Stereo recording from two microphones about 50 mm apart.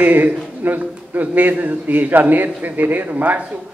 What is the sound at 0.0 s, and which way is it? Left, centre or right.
A man's voice, right.